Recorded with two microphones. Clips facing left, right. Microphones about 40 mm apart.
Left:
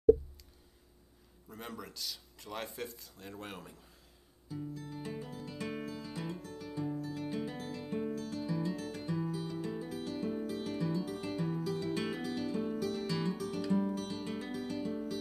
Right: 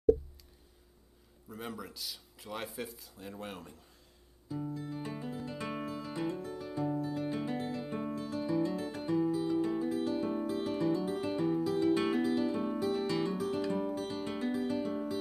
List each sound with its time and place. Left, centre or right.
1.5 s speech: centre
4.7 s music: right